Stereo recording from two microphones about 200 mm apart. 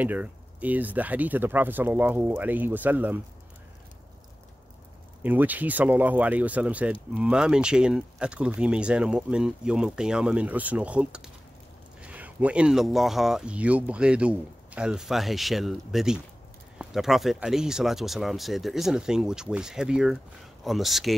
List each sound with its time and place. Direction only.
0.0 s speech: 10° right (ahead or behind)
5.2 s speech: 10° right (ahead or behind)